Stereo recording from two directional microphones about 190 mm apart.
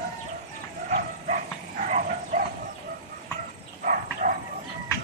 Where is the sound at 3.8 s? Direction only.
45° right (ahead or behind).